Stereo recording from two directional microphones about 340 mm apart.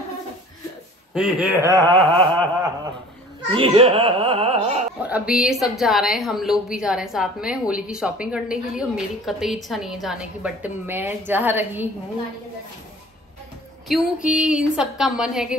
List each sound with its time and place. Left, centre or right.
1.1 s a sound: centre
5.0 s a woman's voice: centre
14.3 s a woman's voice: centre